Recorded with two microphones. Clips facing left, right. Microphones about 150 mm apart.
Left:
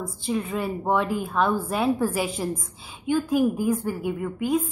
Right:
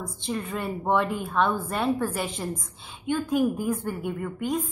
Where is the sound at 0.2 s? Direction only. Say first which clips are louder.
Left 4 dB; 5° left (ahead or behind).